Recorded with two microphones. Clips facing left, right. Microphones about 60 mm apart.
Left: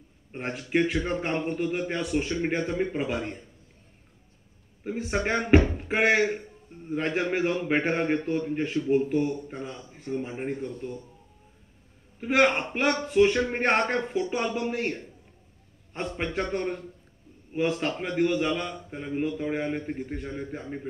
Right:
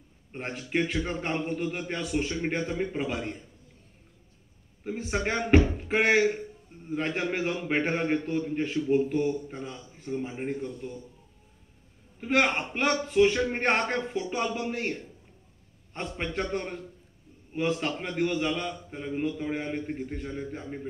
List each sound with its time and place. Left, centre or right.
0.3 s speech: centre
4.8 s speech: centre
12.2 s a man's voice: centre
15.9 s speech: centre